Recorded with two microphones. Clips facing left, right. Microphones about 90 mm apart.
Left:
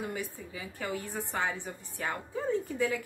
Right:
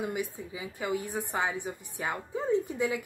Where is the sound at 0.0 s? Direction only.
15° right (ahead or behind).